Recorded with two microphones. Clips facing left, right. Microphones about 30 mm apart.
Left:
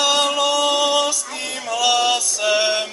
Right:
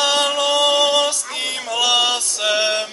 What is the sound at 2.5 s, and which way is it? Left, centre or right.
Music, right.